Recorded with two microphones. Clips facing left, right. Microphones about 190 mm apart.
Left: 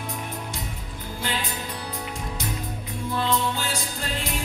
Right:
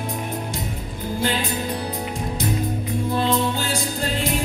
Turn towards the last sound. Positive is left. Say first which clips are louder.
# right 4 dB
turn(degrees=-30)  # may be behind; listen again after turning